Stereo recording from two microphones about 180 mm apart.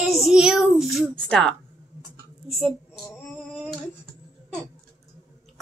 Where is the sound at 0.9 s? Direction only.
5° left (ahead or behind).